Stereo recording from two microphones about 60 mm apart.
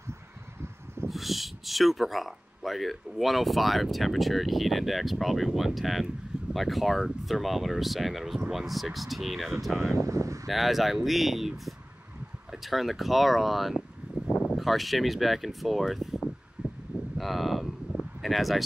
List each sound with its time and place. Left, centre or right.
1.0 s speech: centre
9.9 s speech: right
10.4 s speech: centre
14.2 s a sound: left
14.6 s speech: centre
16.6 s a sound: centre
17.2 s speech: centre